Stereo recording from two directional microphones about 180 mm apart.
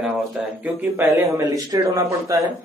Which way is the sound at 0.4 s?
5° right (ahead or behind).